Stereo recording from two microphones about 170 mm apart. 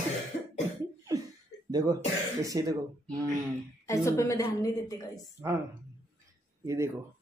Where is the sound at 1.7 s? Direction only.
25° right (ahead or behind).